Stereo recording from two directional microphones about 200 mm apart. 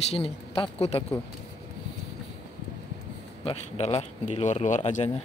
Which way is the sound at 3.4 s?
30° left (ahead or behind).